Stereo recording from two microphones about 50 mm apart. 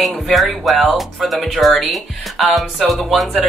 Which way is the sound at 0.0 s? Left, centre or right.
Centre.